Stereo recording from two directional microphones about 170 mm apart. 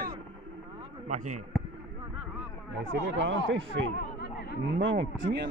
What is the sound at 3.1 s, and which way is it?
Speech, 90° right.